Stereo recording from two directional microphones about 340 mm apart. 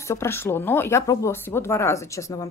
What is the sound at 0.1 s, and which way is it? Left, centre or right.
Speech, centre.